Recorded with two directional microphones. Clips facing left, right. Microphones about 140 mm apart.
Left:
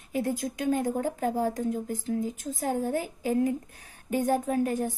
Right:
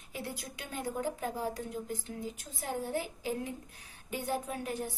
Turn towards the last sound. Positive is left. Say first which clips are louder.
# left 10 dB
turn(degrees=45)  # may be behind; listen again after turning